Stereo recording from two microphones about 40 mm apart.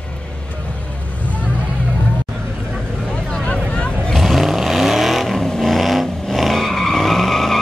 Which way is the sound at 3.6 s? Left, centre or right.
Left.